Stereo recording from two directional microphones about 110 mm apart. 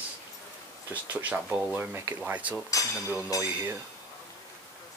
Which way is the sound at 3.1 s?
30° left (ahead or behind).